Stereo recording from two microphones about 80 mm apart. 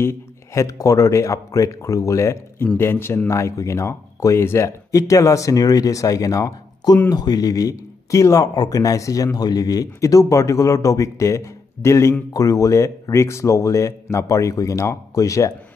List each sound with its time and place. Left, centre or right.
0.0 s speech: left